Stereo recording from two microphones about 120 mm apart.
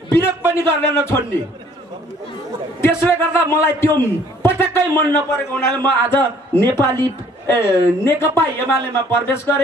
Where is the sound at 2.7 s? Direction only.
20° left (ahead or behind).